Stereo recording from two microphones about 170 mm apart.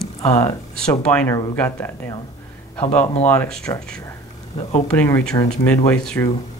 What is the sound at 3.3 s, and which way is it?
Speech, 5° left (ahead or behind).